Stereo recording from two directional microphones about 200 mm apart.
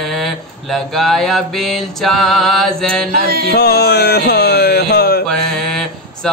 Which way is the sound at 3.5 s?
50° left (ahead or behind).